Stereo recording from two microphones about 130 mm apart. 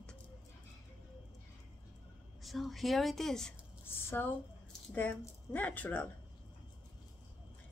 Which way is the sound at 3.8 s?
15° left (ahead or behind).